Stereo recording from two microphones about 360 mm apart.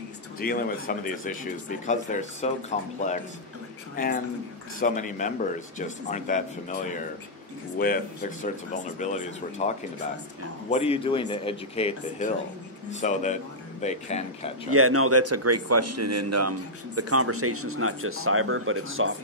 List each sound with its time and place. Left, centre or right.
0.4 s speech: left
3.9 s speech: left
14.7 s speech: right